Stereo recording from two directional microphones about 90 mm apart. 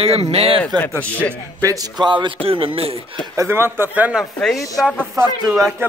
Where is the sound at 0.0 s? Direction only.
90° right.